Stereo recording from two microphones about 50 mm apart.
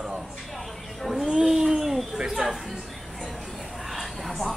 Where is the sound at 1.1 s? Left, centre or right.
Centre.